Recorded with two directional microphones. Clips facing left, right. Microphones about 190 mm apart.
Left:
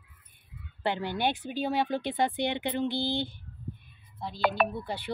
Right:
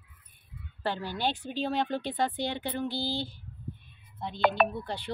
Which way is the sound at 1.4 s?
10° left (ahead or behind).